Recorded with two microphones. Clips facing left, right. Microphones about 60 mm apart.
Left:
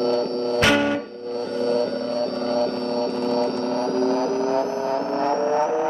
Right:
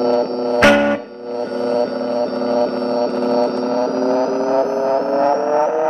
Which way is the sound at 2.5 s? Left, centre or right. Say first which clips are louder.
Right 6 dB; right.